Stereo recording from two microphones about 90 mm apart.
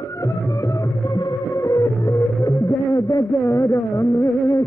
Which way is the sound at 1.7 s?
40° left (ahead or behind).